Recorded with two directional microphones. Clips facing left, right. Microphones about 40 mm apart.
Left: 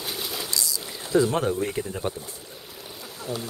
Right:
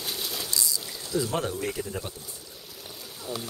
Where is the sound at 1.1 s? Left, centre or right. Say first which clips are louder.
Left 8 dB; left.